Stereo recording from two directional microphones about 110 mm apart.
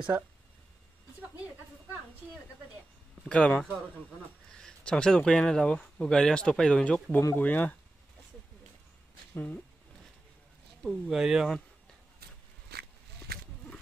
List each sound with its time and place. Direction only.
3.3 s speech: 10° left (ahead or behind)
7.2 s speech: 20° left (ahead or behind)
9.3 s speech: 20° left (ahead or behind)
10.8 s speech: centre (ahead or behind)